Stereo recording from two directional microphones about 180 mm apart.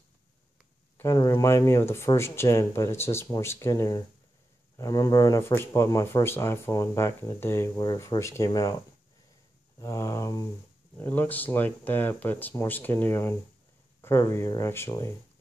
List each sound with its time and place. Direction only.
0.9 s speech: 15° left (ahead or behind)
9.8 s speech: 15° left (ahead or behind)